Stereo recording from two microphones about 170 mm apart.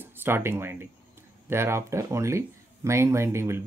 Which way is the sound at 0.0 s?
10° right (ahead or behind).